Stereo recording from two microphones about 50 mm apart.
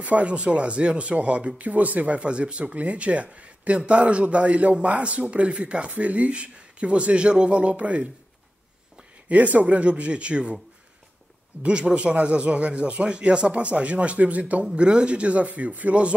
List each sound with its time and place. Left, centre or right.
0.0 s speech: right
9.3 s speech: right
11.6 s speech: right